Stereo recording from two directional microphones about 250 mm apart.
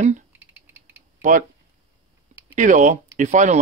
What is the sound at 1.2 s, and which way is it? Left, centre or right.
Speech, right.